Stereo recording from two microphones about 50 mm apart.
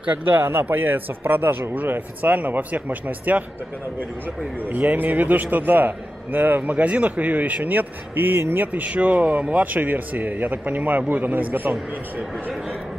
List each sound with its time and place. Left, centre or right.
0.0 s a man's voice: right
4.6 s a man's voice: right
8.7 s a man's voice: right